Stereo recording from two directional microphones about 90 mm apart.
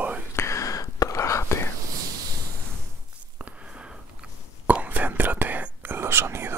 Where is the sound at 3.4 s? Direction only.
15° right (ahead or behind).